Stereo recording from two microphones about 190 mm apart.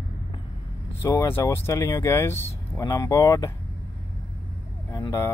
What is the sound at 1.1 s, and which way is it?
Speech, 15° left (ahead or behind).